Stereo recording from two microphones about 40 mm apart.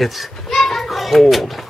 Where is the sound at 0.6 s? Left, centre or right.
Centre.